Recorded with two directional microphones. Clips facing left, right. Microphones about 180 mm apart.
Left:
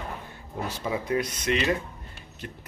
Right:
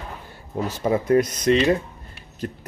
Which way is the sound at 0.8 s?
50° right (ahead or behind).